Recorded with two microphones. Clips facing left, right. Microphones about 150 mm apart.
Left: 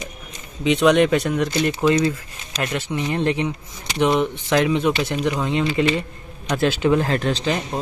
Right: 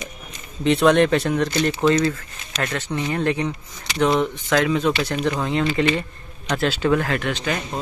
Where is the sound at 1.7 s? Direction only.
10° left (ahead or behind).